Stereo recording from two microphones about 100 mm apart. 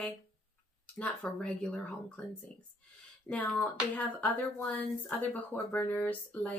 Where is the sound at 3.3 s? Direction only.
25° left (ahead or behind).